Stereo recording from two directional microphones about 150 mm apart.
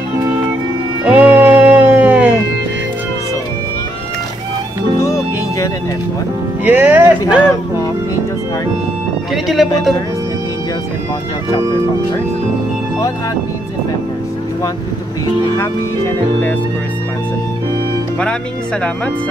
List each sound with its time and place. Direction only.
1.0 s music: 15° right (ahead or behind)
5.0 s music: 20° left (ahead or behind)
6.6 s speech: 10° right (ahead or behind)
9.3 s speech: centre (ahead or behind)
15.5 s speech: 15° left (ahead or behind)